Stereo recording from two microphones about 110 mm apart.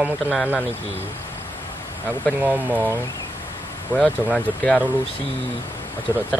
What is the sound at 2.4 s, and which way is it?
Speech, 15° right (ahead or behind).